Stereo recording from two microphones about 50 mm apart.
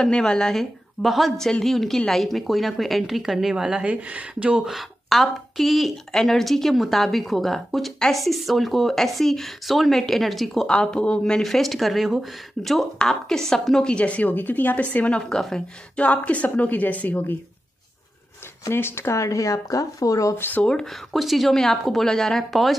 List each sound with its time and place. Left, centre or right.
0.0 s a woman's voice: centre
1.0 s a woman's voice: centre
1.4 s a woman's voice: centre
3.8 s speech: right
4.6 s a woman's voice: centre
10.7 s a woman's voice: centre
11.4 s a woman's voice: centre
13.8 s speech: left
14.9 s a woman's voice: left
15.2 s a woman's voice: centre
16.0 s speech: left
18.7 s speech: left
20.6 s a woman's voice: centre